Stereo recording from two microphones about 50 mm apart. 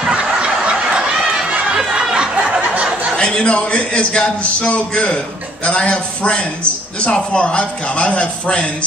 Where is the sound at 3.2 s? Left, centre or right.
Centre.